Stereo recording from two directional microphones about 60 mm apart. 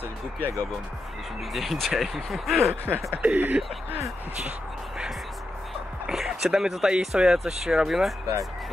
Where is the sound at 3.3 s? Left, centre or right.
Right.